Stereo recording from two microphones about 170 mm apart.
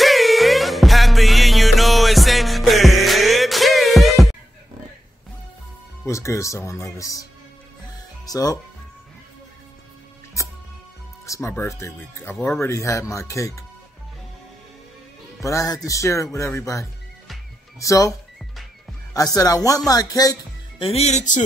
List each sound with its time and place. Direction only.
0.0 s music: centre (ahead or behind)
6.0 s speech: 15° left (ahead or behind)
8.3 s speech: 20° left (ahead or behind)
11.2 s speech: 15° left (ahead or behind)
15.4 s speech: 20° left (ahead or behind)
19.1 s speech: 20° left (ahead or behind)
20.8 s speech: 35° left (ahead or behind)